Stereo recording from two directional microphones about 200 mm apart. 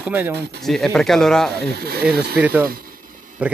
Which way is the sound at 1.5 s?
55° right (ahead or behind).